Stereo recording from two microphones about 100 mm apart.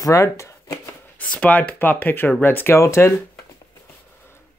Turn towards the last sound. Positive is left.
turn(degrees=25)  # may be behind; listen again after turning